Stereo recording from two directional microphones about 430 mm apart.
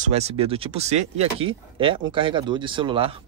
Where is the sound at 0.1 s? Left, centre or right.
Centre.